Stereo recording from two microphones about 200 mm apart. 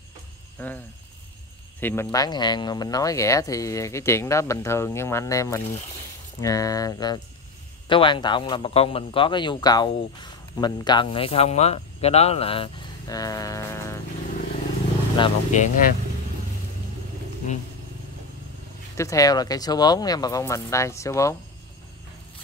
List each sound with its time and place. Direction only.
0.6 s speech: 5° left (ahead or behind)
1.8 s speech: 10° left (ahead or behind)
2.0 s speech: 20° left (ahead or behind)
15.1 s speech: 30° left (ahead or behind)
18.9 s speech: 15° left (ahead or behind)